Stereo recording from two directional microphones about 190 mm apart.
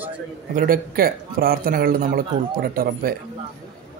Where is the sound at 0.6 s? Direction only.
50° right (ahead or behind).